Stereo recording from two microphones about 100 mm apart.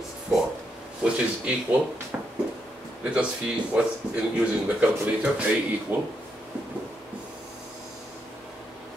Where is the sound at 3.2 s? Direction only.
10° right (ahead or behind).